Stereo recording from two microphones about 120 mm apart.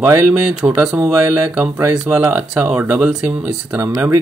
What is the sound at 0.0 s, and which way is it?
Speech, 15° right (ahead or behind).